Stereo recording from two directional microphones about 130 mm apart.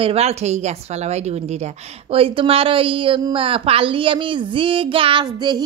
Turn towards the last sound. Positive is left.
turn(degrees=-30)  # may be behind; listen again after turning